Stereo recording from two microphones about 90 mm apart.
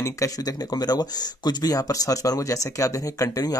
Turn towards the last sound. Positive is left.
turn(degrees=40)  # may be behind; listen again after turning